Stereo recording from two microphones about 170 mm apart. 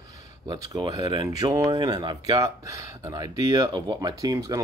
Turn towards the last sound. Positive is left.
turn(degrees=-20)  # may be behind; listen again after turning